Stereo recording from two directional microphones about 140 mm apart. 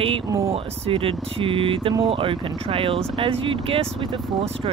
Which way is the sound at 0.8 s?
40° right (ahead or behind).